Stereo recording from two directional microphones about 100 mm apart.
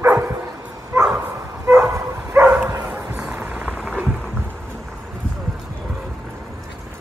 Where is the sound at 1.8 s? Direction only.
30° right (ahead or behind).